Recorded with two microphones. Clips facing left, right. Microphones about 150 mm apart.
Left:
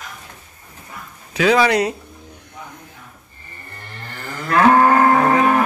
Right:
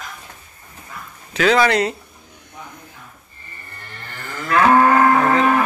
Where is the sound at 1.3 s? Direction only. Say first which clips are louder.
Left 1 dB; 10° left (ahead or behind).